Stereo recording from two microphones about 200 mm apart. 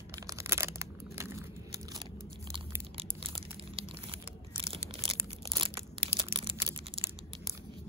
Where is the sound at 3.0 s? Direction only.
25° right (ahead or behind).